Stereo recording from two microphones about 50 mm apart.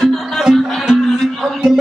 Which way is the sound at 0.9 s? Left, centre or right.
Centre.